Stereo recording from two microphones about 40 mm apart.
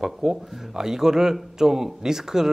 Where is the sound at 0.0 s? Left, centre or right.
Centre.